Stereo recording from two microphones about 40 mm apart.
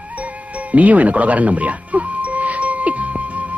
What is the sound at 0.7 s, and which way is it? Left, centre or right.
Music, right.